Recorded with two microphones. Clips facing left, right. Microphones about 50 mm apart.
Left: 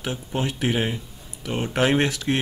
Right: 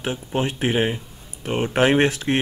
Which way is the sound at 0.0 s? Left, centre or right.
Right.